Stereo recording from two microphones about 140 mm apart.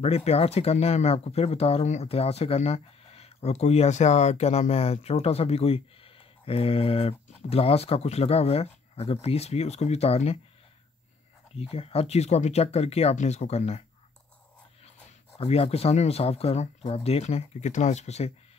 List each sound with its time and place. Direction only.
0.0 s speech: 50° left (ahead or behind)
11.5 s speech: 45° left (ahead or behind)
15.0 s speech: 45° left (ahead or behind)